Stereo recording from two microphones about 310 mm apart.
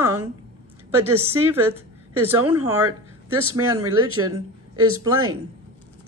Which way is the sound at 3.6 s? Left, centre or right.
Right.